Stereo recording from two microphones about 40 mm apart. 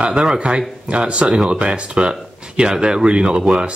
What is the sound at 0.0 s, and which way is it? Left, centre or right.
Speech, right.